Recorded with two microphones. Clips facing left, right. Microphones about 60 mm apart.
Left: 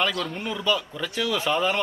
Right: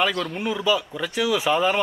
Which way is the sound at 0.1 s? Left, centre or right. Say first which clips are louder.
Right 3 dB; centre.